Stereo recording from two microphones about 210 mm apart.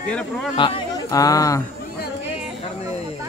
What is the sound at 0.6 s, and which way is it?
Speech, 20° left (ahead or behind).